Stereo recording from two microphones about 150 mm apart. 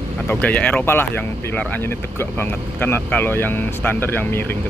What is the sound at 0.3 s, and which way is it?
Speech, 10° left (ahead or behind).